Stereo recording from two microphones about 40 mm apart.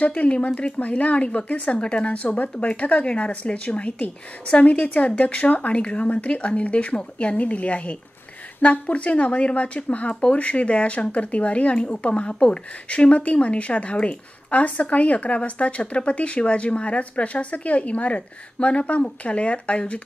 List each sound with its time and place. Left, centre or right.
0.0 s speech: left